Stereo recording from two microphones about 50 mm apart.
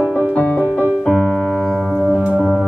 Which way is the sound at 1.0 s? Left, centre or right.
Centre.